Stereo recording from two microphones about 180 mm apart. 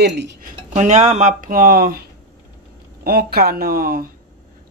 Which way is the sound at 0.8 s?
40° right (ahead or behind).